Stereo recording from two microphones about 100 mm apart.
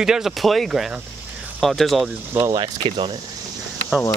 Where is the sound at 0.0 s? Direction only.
5° right (ahead or behind).